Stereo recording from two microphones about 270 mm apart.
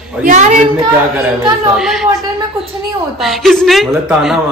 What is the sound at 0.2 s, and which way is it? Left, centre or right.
Speech, right.